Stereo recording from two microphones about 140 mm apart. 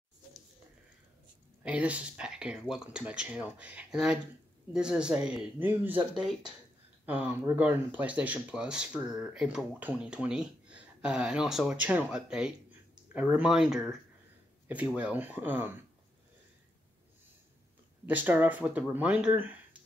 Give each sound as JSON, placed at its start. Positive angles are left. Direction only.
{"t": 1.6, "sound": "speech", "side_deg": -10}
{"t": 15.0, "sound": "speech", "side_deg": -10}
{"t": 18.0, "sound": "speech", "side_deg": -10}